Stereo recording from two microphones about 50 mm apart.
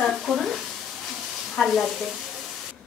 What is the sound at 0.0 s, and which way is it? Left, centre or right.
Sizzle, centre.